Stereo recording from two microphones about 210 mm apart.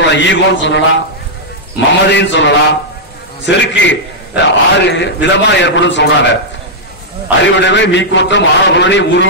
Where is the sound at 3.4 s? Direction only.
55° left (ahead or behind).